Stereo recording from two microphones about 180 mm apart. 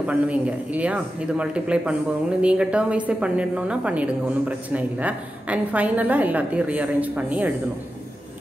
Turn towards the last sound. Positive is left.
turn(degrees=-10)  # may be behind; listen again after turning